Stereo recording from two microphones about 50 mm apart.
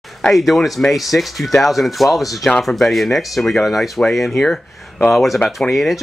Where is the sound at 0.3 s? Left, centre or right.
Centre.